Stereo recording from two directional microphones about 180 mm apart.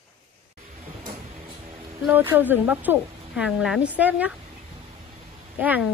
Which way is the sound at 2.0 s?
10° right (ahead or behind).